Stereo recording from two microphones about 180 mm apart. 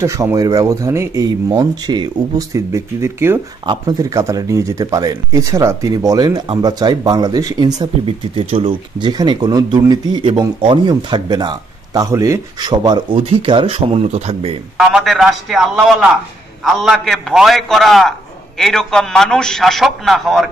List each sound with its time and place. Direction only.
0.0 s speech: 15° right (ahead or behind); by 14.5 s 35° right (ahead or behind)
14.8 s a man's voice: 5° right (ahead or behind)